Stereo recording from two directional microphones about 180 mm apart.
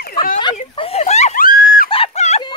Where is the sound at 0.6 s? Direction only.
35° left (ahead or behind); by 1.9 s 50° left (ahead or behind).